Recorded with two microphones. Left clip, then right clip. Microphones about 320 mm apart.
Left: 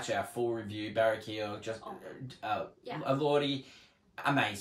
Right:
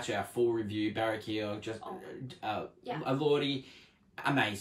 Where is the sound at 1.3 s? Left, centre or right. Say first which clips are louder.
Right 2 dB; centre.